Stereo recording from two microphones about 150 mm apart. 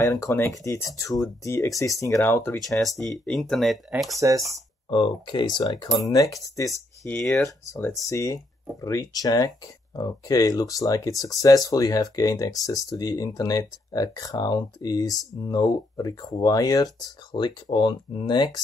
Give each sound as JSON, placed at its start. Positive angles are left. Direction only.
{"t": 0.0, "sound": "speech", "side_deg": 20}
{"t": 2.6, "sound": "speech", "side_deg": 0}
{"t": 4.1, "sound": "speech", "side_deg": -20}
{"t": 4.8, "sound": "speech", "side_deg": 35}